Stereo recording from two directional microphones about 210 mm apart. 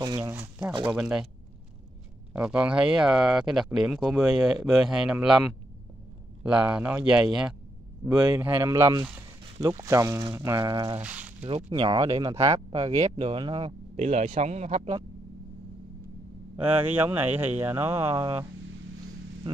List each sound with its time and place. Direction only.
0.0 s speech: 15° right (ahead or behind)
0.8 s speech: 5° right (ahead or behind)
2.3 s speech: 5° right (ahead or behind)
11.0 s speech: 5° right (ahead or behind)
11.4 s speech: 25° right (ahead or behind)
16.5 s speech: 10° right (ahead or behind)